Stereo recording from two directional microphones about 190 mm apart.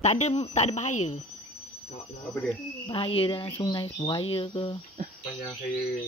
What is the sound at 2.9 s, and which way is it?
Speech, 30° left (ahead or behind).